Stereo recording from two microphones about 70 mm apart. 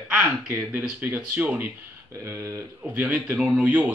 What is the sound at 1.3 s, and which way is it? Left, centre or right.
Speech, right.